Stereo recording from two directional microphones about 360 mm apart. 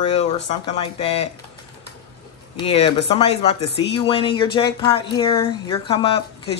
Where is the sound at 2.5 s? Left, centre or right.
Centre.